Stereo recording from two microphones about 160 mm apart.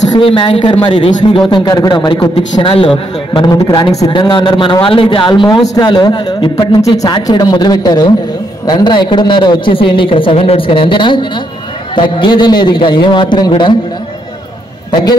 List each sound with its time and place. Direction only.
0.1 s a man's voice: 30° left (ahead or behind)
14.9 s speech: 25° left (ahead or behind)